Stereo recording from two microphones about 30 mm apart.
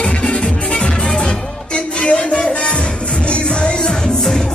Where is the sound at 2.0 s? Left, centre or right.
Left.